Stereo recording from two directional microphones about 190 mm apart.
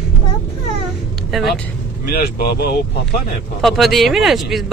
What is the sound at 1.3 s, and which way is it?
Speech, centre (ahead or behind).